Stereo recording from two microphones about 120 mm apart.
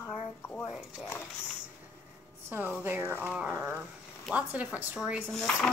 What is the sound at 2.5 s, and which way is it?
Speech, 15° right (ahead or behind).